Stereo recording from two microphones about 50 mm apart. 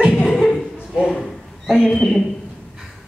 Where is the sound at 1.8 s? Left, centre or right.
Centre.